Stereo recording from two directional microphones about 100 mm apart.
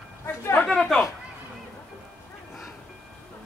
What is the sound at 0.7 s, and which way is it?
Speech, 5° left (ahead or behind).